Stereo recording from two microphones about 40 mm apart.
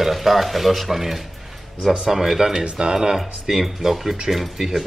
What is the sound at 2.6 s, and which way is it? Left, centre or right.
Speech, right.